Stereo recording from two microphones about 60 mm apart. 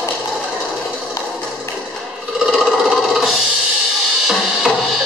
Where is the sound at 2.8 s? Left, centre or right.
Centre.